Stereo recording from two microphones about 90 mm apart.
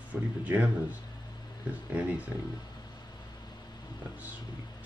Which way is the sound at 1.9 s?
15° right (ahead or behind).